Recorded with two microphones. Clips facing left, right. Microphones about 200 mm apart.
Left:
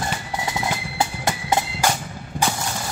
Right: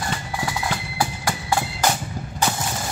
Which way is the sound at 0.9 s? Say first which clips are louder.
Left 1 dB; 20° left (ahead or behind).